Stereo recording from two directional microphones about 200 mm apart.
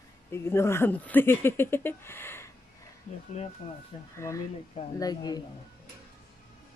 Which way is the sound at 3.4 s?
35° left (ahead or behind).